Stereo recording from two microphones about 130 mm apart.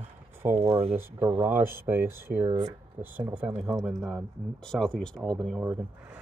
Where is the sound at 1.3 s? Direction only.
15° right (ahead or behind).